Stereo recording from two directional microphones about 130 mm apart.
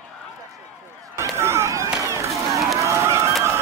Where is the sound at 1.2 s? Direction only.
20° right (ahead or behind).